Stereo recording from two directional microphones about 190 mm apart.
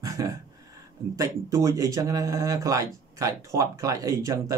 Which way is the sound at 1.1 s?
15° right (ahead or behind).